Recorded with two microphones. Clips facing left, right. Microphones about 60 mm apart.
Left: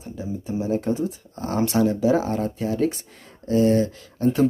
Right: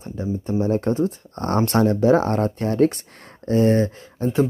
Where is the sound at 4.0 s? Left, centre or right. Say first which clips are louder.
Left 1 dB; right.